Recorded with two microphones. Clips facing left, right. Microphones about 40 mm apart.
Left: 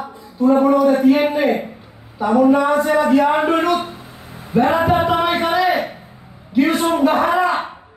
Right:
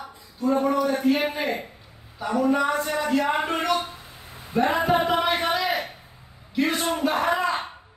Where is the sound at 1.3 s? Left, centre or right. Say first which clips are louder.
Left 10 dB; centre; by 4.7 s left.